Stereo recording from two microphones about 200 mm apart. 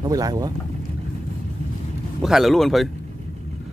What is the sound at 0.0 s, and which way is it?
Speech, 20° right (ahead or behind).